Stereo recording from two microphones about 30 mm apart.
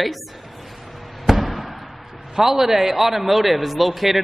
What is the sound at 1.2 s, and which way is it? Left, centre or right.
Fireworks, centre.